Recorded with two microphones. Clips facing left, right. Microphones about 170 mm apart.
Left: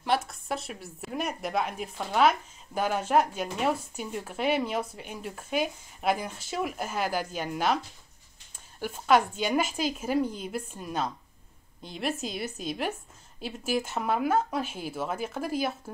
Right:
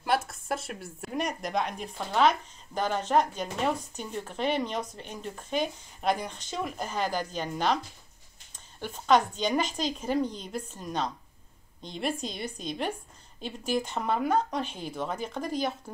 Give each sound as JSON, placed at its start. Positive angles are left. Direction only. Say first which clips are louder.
{"t": 0.0, "sound": "speech", "louder": "even", "side_deg": 0}